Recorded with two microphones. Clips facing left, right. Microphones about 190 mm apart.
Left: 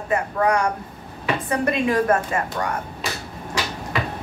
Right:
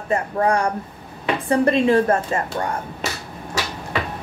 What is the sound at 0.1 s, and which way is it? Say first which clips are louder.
Speech: right 1 dB; 30° right (ahead or behind).